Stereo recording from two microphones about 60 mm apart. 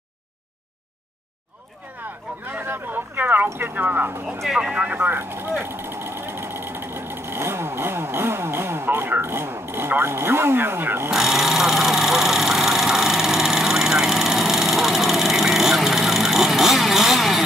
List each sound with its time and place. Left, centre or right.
2.4 s a sound: right
3.5 s speech: right
4.6 s speech: centre
4.8 s speech: right
5.6 s vehicle: right
11.1 s vehicle: centre